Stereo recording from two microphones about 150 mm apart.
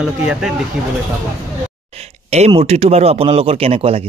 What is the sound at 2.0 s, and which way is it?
Speech, 45° right (ahead or behind).